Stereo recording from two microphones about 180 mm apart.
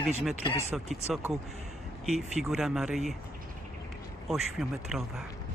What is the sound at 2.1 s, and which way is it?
Speech, centre (ahead or behind).